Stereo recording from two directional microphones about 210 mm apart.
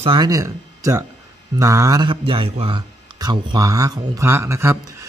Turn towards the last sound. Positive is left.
turn(degrees=-15)  # may be behind; listen again after turning